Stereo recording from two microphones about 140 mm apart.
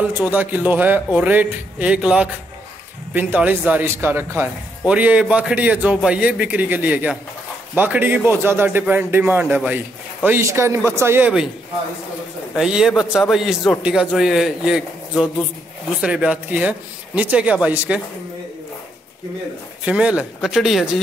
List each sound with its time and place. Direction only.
0.0 s a man's voice: 10° right (ahead or behind)
12.5 s a man's voice: 5° right (ahead or behind)
19.8 s a man's voice: 10° right (ahead or behind)